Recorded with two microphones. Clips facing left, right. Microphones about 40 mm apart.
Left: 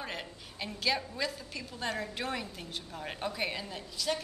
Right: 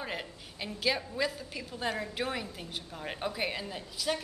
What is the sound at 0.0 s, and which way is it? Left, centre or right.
A woman's voice, centre.